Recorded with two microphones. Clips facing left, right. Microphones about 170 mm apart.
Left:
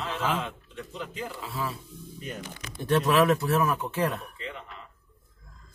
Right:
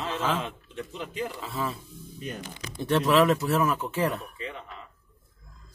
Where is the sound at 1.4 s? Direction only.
5° left (ahead or behind).